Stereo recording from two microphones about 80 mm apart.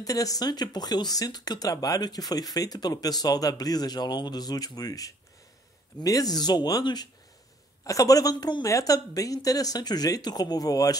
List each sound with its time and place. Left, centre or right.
0.0 s speech: left
7.8 s speech: left
8.6 s speech: left